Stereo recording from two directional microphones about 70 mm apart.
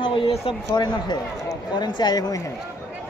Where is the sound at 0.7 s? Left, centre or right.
Left.